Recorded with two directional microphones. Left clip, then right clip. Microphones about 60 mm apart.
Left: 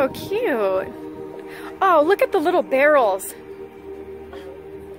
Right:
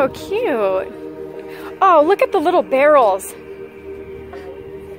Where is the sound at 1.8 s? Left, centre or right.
Left.